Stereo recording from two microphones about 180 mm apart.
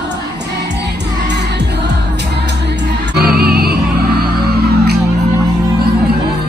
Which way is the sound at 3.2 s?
60° right (ahead or behind).